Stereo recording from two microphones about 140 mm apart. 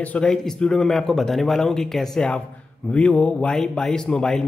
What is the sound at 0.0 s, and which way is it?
A man's voice, 10° left (ahead or behind).